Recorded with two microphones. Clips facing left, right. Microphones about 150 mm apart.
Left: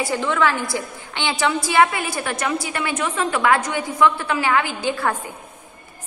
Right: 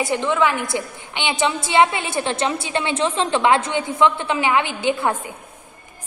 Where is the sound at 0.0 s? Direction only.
20° right (ahead or behind).